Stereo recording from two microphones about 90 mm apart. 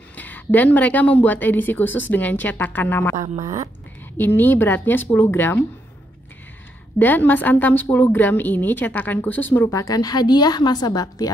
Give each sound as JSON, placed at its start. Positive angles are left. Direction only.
{"t": 0.1, "sound": "a woman's voice", "side_deg": 20}
{"t": 4.2, "sound": "a woman's voice", "side_deg": 20}
{"t": 7.0, "sound": "a woman's voice", "side_deg": 20}
{"t": 9.7, "sound": "a woman's voice", "side_deg": 40}